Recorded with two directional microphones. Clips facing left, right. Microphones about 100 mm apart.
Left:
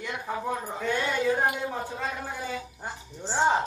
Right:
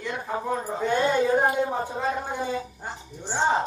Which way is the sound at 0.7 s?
20° right (ahead or behind).